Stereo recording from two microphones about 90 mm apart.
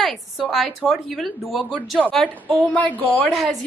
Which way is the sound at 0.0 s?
Centre (ahead or behind).